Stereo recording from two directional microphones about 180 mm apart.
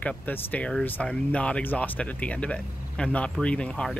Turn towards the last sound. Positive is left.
turn(degrees=5)  # may be behind; listen again after turning